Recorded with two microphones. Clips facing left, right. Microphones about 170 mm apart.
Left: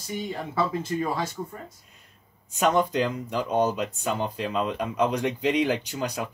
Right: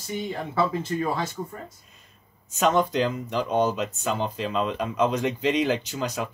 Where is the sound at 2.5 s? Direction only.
15° left (ahead or behind).